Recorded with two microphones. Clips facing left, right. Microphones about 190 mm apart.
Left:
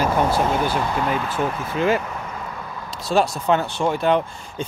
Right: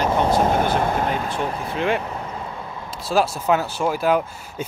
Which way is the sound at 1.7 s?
Centre (ahead or behind).